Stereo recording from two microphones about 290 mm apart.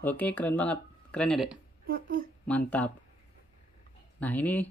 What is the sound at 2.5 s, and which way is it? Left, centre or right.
Speech, centre.